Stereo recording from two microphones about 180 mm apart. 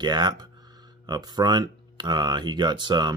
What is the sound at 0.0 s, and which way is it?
Speech, 25° right (ahead or behind).